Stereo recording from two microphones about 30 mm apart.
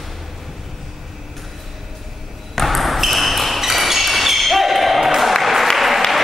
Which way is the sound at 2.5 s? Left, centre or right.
Centre.